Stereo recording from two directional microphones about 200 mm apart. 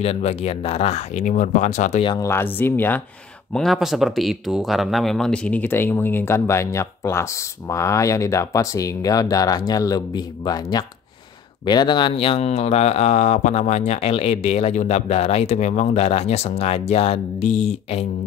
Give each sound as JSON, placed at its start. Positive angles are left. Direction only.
{"t": 0.0, "sound": "speech", "side_deg": 30}
{"t": 2.1, "sound": "speech", "side_deg": 10}